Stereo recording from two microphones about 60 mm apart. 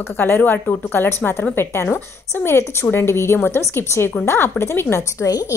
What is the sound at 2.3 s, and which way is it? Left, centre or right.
A woman's voice, left.